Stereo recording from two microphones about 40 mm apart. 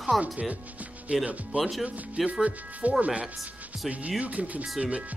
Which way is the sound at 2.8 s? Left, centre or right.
Right.